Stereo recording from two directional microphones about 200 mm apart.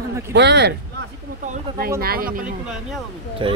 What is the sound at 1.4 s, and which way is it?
Speech, 40° right (ahead or behind).